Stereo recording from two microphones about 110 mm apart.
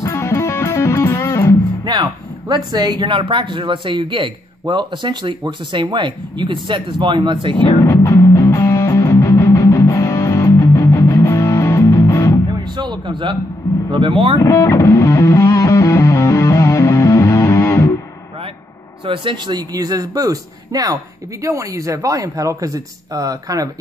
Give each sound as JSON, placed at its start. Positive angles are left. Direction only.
{"t": 0.0, "sound": "music", "side_deg": 25}
{"t": 1.9, "sound": "a man's voice", "side_deg": -40}
{"t": 7.8, "sound": "music", "side_deg": 25}
{"t": 12.7, "sound": "a sound", "side_deg": -45}
{"t": 13.8, "sound": "a man's voice", "side_deg": -50}
{"t": 14.4, "sound": "music", "side_deg": 25}
{"t": 19.0, "sound": "a man's voice", "side_deg": -45}